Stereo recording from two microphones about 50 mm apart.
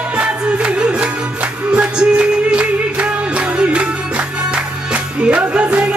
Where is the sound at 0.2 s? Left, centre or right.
Right.